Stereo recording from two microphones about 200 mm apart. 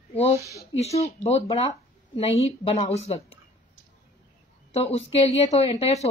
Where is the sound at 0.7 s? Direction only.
30° left (ahead or behind).